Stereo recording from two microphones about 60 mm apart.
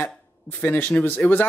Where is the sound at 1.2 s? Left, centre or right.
Left.